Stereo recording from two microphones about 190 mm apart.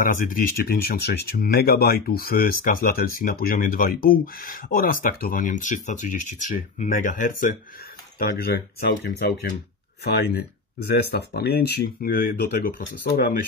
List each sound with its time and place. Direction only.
0.1 s speech: 45° left (ahead or behind)
10.9 s speech: 55° left (ahead or behind)